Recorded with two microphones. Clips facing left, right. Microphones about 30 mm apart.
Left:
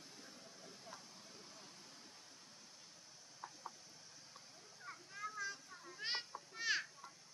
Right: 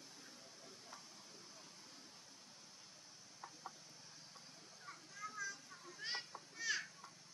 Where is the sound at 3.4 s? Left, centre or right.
Centre.